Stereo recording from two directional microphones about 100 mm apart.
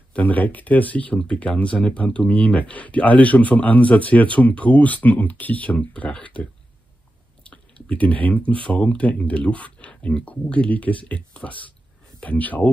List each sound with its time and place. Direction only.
0.1 s speech: 15° left (ahead or behind)
7.4 s a sound: 10° left (ahead or behind)
8.6 s speech: 10° left (ahead or behind)